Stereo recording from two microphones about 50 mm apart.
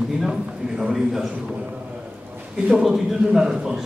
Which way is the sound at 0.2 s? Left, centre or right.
Centre.